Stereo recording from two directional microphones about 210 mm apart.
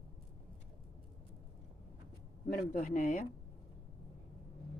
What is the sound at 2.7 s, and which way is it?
Speech, 40° left (ahead or behind).